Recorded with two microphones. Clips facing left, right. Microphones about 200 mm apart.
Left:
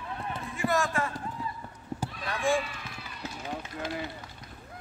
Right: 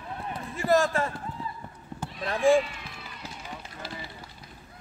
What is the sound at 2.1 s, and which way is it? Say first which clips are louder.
Speech: right 7 dB; 25° right (ahead or behind).